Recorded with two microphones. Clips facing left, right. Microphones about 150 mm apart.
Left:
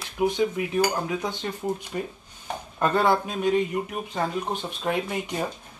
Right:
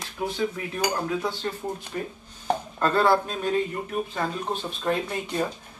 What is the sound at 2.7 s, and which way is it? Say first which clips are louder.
Speech: even; 15° left (ahead or behind).